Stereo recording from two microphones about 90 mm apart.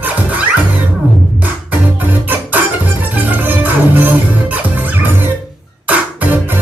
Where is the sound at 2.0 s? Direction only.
20° right (ahead or behind).